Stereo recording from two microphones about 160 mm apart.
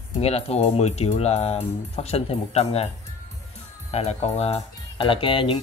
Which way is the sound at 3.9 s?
40° left (ahead or behind).